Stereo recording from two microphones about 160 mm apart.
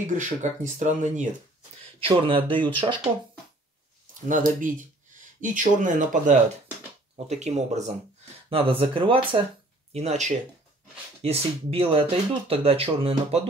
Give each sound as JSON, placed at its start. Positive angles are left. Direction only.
{"t": 0.0, "sound": "speech", "side_deg": -50}
{"t": 2.0, "sound": "speech", "side_deg": -35}
{"t": 4.1, "sound": "speech", "side_deg": -55}
{"t": 7.2, "sound": "speech", "side_deg": -45}
{"t": 8.6, "sound": "speech", "side_deg": -35}
{"t": 9.9, "sound": "speech", "side_deg": -45}